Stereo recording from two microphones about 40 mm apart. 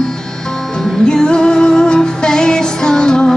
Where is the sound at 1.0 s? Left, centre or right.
Left.